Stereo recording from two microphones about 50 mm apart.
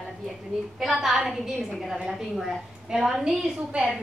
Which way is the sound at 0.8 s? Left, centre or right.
Centre.